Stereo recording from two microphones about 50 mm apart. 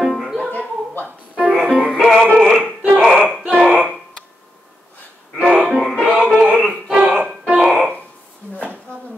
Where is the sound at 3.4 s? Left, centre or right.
Right.